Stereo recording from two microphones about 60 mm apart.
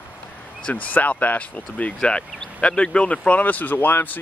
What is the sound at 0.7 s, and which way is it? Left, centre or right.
Speech, left.